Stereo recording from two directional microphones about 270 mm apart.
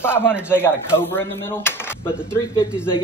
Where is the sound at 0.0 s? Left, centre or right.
Centre.